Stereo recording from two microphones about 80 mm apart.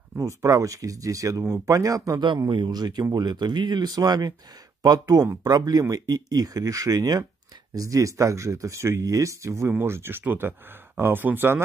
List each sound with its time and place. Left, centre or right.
0.2 s speech: right
2.5 s speech: right
5.4 s speech: right